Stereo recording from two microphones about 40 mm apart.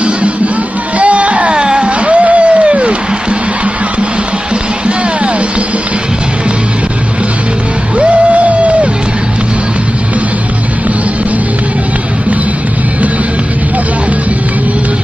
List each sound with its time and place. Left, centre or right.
0.9 s music: right
1.5 s a sound: right
8.0 s music: right